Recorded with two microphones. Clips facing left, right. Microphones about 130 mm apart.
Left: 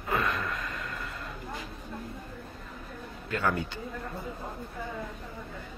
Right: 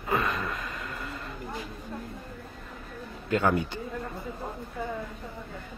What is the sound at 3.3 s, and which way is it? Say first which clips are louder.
Speech: right 5 dB; 20° right (ahead or behind).